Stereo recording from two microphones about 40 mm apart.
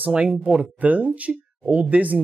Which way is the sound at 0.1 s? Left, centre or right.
Right.